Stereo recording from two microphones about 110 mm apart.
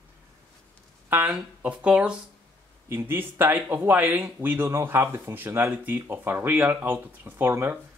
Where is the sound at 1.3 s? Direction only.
10° right (ahead or behind).